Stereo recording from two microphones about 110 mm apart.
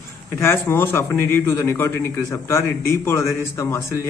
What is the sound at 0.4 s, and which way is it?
A man's voice, 25° left (ahead or behind).